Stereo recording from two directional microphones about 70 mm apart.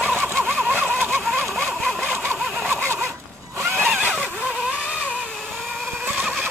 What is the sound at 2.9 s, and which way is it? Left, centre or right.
Zipper, right.